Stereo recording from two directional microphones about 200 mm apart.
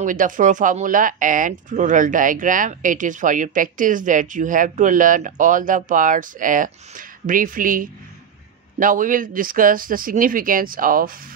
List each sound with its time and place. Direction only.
0.0 s speech: 40° right (ahead or behind)